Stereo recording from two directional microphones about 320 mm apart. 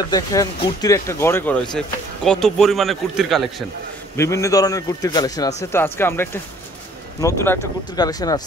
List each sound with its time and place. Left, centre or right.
0.1 s speech: centre